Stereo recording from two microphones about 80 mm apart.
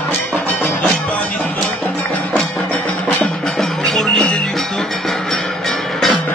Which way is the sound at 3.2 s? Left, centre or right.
Centre.